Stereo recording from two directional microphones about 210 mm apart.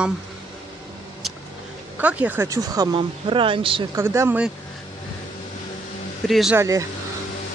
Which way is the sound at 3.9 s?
15° right (ahead or behind).